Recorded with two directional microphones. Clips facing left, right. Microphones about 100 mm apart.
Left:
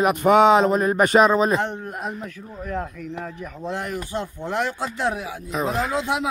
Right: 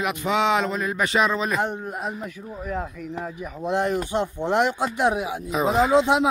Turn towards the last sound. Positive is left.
turn(degrees=-20)  # may be behind; listen again after turning